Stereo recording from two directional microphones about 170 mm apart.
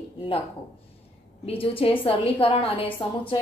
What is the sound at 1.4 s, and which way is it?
A woman's voice, 35° left (ahead or behind).